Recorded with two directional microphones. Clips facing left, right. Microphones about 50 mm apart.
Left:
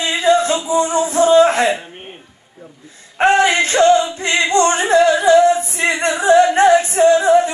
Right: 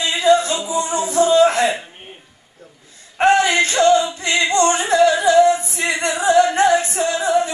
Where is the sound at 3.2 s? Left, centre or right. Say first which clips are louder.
Left 1 dB; left.